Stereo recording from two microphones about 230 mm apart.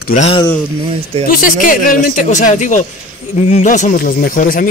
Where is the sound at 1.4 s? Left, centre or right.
Left.